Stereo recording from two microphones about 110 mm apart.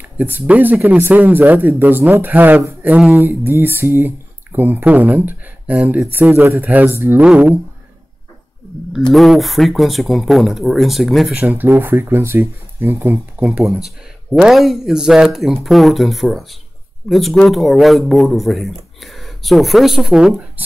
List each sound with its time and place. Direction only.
0.0 s speech: 15° right (ahead or behind)
9.1 s speech: centre (ahead or behind)
11.3 s speech: 15° right (ahead or behind)
14.3 s speech: 5° right (ahead or behind)